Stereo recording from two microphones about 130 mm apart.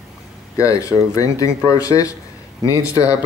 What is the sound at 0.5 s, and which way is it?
Speech, 25° left (ahead or behind).